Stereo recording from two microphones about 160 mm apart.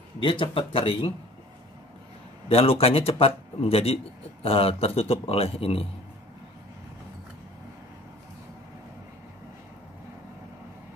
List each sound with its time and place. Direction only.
0.2 s a man's voice: 30° left (ahead or behind)
2.4 s a man's voice: 40° left (ahead or behind)